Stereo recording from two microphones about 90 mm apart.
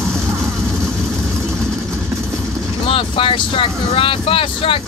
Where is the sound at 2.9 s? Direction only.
75° left (ahead or behind).